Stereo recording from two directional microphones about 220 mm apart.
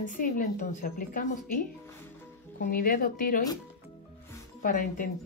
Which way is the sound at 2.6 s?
40° left (ahead or behind).